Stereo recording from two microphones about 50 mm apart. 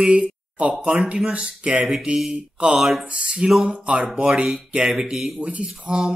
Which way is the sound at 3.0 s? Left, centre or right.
Centre.